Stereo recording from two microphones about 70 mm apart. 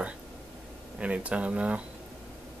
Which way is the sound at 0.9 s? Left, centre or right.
Centre.